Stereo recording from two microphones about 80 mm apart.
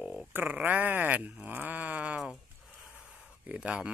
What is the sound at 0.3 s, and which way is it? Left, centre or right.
Speech, right.